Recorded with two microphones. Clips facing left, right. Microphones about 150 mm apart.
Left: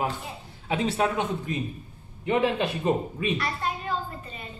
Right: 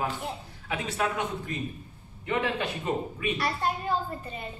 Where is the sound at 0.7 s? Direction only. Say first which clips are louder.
Left 5 dB; 30° left (ahead or behind).